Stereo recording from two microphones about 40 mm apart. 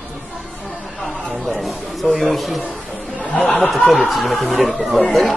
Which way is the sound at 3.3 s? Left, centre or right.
Left.